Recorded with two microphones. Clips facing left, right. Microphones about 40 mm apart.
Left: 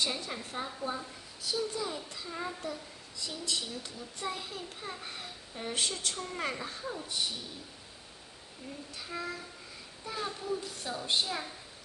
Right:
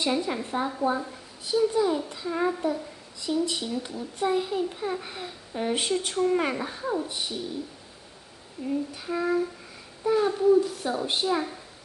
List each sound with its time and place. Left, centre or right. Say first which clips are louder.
0.0 s a woman's voice: right 8 dB; right
8.6 s a woman's voice: right 14 dB; centre